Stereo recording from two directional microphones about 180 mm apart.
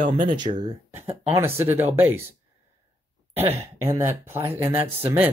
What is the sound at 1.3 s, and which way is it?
Speech, 15° right (ahead or behind).